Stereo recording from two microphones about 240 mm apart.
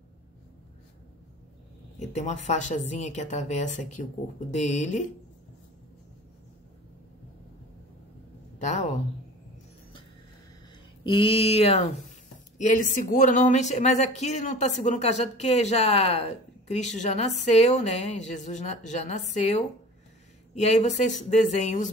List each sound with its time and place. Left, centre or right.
2.0 s speech: left
11.1 s speech: left